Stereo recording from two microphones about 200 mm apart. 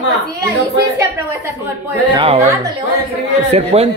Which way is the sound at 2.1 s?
30° right (ahead or behind).